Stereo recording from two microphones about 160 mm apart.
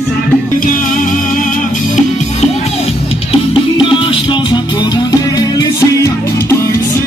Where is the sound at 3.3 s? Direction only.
35° left (ahead or behind); by 6.5 s 20° left (ahead or behind).